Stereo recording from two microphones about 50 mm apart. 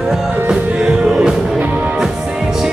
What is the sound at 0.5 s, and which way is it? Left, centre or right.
Music, centre.